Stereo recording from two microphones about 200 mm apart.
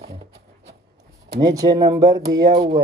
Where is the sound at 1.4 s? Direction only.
20° right (ahead or behind).